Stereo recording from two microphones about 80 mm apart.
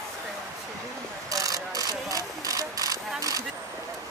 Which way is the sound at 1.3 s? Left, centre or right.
Right.